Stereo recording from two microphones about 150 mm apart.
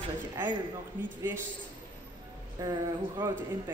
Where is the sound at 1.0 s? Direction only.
10° right (ahead or behind).